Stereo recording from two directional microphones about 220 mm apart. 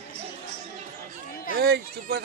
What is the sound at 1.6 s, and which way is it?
Speech, 45° right (ahead or behind).